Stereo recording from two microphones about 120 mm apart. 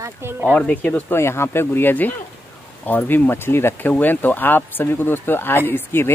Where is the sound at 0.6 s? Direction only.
10° left (ahead or behind).